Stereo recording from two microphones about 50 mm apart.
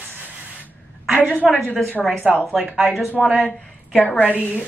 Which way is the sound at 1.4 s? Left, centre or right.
Centre.